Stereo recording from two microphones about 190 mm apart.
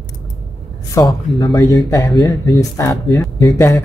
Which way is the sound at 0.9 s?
20° left (ahead or behind).